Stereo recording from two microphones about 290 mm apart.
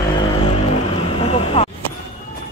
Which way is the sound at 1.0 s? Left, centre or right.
Centre.